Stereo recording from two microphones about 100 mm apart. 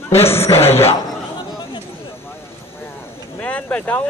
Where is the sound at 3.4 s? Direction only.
15° left (ahead or behind).